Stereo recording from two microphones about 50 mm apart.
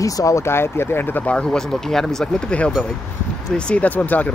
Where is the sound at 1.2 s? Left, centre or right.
Left.